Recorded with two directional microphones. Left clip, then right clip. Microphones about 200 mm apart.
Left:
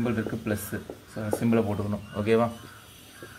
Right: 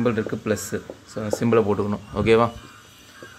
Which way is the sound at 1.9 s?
30° right (ahead or behind).